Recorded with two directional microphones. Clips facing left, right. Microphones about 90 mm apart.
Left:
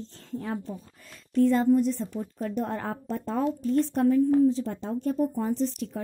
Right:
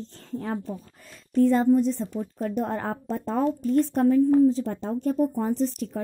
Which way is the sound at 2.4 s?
45° right (ahead or behind).